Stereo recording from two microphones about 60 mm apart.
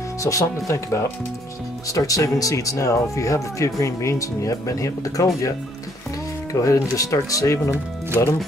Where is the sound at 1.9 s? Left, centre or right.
Left.